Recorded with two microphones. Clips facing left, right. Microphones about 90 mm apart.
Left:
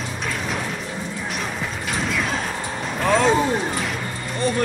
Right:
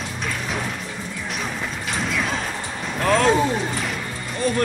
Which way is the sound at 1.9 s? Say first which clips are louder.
Left 1 dB; centre (ahead or behind).